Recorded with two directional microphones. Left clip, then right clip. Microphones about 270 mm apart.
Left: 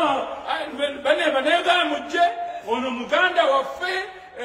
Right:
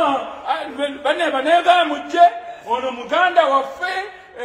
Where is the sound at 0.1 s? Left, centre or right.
Centre.